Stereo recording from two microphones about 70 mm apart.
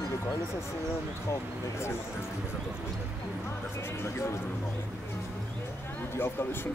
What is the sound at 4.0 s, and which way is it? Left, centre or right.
Speech, left.